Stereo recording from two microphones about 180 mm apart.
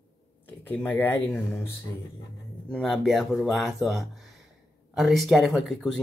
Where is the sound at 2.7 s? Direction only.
5° left (ahead or behind).